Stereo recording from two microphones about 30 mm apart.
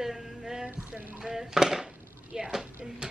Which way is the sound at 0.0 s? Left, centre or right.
Right.